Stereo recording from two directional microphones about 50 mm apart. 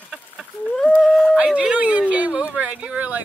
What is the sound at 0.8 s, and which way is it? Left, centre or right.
Speech, left.